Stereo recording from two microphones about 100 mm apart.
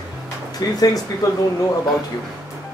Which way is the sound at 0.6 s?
40° left (ahead or behind).